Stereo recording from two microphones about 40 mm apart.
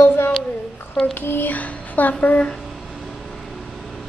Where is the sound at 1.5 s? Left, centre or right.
Left.